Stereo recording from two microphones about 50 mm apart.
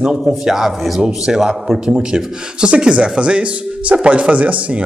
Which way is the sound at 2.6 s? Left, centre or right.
Right.